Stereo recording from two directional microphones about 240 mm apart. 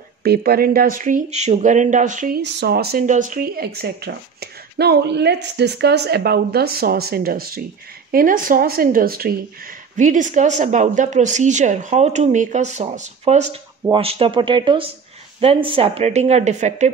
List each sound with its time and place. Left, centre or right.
0.2 s speech: right